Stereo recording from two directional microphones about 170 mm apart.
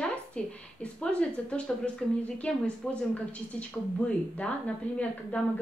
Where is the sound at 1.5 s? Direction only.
5° left (ahead or behind).